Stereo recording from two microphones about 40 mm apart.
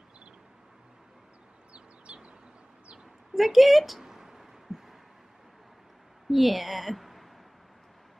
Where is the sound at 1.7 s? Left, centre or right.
Right.